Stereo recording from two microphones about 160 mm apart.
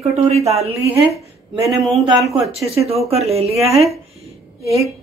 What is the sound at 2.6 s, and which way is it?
Speech, 40° right (ahead or behind).